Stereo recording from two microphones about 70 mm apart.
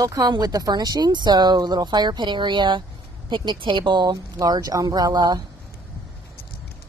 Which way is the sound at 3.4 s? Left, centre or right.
Right.